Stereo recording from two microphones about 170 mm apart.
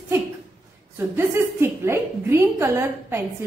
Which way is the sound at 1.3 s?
15° right (ahead or behind).